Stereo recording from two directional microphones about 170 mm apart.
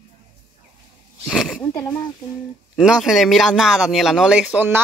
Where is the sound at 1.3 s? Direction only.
Centre (ahead or behind).